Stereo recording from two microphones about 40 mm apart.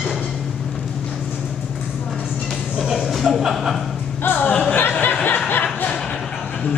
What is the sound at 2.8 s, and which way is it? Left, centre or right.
Speech, centre.